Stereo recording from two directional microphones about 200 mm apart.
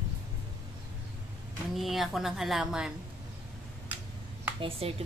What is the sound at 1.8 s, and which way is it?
A woman's voice, centre (ahead or behind).